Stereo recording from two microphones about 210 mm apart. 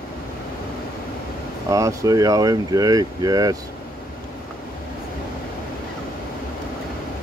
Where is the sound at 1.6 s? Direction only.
15° right (ahead or behind).